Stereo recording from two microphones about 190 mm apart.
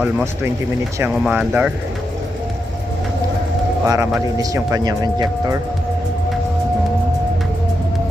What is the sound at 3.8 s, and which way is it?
Speech, 15° right (ahead or behind).